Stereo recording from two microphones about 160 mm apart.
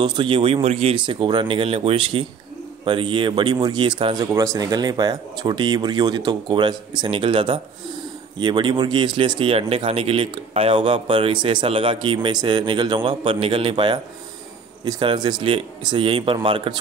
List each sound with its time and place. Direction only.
0.0 s speech: 30° right (ahead or behind)